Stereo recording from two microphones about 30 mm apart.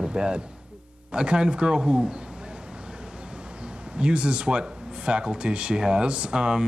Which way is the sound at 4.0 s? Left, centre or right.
Right.